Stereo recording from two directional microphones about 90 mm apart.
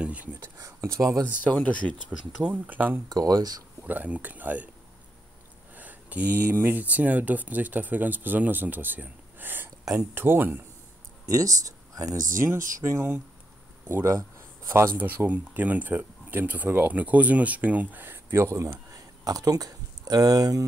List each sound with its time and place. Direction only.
0.0 s speech: 15° right (ahead or behind)
0.3 s speech: 40° right (ahead or behind)
1.3 s speech: 15° left (ahead or behind)
2.0 s speech: 15° right (ahead or behind)
3.1 s speech: 45° right (ahead or behind)
3.8 s speech: 20° right (ahead or behind)
5.8 s a sound: 20° right (ahead or behind)
6.5 s speech: 25° right (ahead or behind)
11.2 s speech: 40° right (ahead or behind)
14.7 s speech: 30° right (ahead or behind)
15.0 s speech: 20° right (ahead or behind)
19.2 s speech: 45° right (ahead or behind)